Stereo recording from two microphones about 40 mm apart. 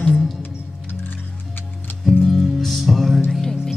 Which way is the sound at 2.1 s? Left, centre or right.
Centre.